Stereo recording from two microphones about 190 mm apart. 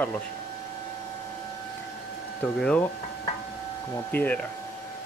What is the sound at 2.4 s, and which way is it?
Speech, 5° left (ahead or behind).